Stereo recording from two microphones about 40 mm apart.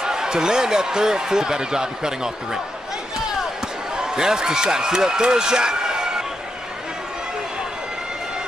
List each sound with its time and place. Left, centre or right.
0.0 s speech: centre
3.9 s speech: centre